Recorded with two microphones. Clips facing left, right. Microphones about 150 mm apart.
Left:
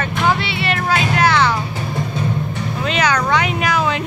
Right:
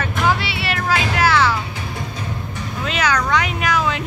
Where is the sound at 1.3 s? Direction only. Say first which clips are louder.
Left 1 dB; 20° left (ahead or behind).